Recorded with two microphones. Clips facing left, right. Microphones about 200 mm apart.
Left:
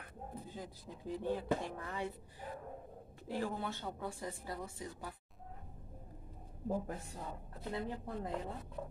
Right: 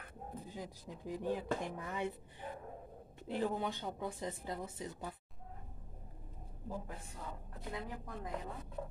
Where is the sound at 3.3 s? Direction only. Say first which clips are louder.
Right 2 dB; 20° right (ahead or behind).